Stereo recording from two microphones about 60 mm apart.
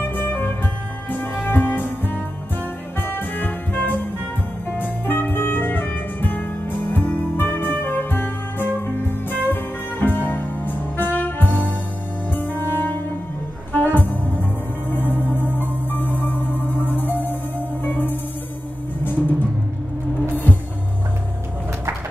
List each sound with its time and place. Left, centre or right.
0.0 s music: left